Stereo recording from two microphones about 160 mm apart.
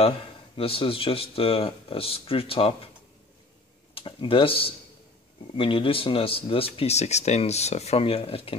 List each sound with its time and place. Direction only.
0.6 s speech: 35° left (ahead or behind)
3.9 s speech: 35° left (ahead or behind)